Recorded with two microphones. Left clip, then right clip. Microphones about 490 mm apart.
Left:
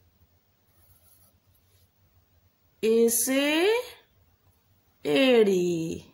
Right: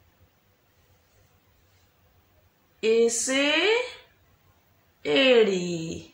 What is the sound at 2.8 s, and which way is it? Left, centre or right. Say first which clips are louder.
Speech: right 1 dB; left.